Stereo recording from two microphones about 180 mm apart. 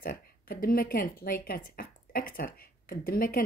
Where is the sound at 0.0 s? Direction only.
55° left (ahead or behind).